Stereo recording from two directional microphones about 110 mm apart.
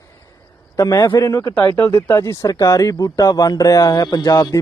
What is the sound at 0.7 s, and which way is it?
Speech, 35° left (ahead or behind).